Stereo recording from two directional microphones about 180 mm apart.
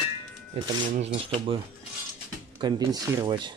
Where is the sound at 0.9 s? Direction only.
35° right (ahead or behind).